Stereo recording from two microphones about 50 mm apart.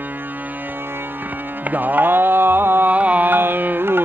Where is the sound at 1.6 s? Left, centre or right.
Right.